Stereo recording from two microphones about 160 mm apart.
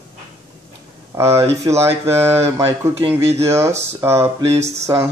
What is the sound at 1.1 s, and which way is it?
Speech, 15° right (ahead or behind).